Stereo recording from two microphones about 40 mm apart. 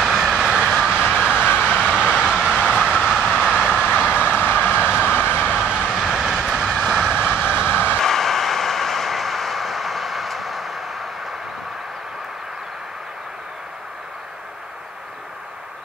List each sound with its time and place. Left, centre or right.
0.0 s vehicle: centre
0.4 s vehicle: centre
3.6 s vehicle: left
5.5 s vehicle: right
6.1 s train: centre
7.2 s vehicle: left
8.0 s vehicle: centre